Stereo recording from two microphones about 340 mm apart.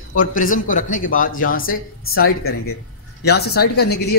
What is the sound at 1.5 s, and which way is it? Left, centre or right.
A woman's voice, left.